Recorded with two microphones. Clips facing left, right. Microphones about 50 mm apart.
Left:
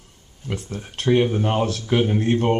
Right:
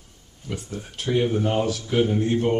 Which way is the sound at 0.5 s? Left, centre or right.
Left.